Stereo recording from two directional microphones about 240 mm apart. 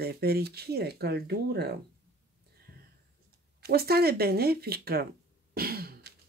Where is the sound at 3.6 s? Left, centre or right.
Right.